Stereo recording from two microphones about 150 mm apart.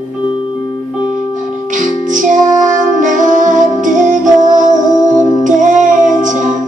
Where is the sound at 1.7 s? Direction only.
60° right (ahead or behind).